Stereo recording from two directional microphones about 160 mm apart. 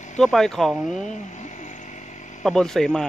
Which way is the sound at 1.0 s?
50° left (ahead or behind).